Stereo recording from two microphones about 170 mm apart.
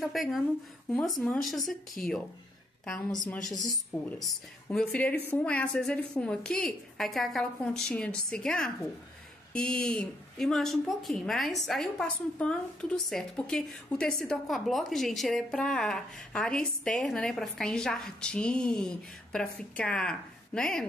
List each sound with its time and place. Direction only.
0.0 s speech: centre (ahead or behind)
3.6 s speech: 20° left (ahead or behind)
4.6 s speech: 5° left (ahead or behind)